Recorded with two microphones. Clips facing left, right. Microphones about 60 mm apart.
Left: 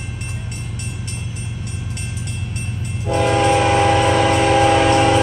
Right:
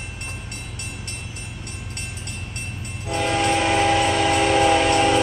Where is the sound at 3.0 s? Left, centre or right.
Centre.